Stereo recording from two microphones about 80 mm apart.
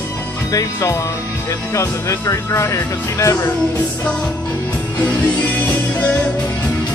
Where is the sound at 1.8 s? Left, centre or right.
Left.